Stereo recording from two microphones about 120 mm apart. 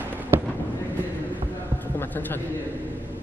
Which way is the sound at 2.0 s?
15° left (ahead or behind).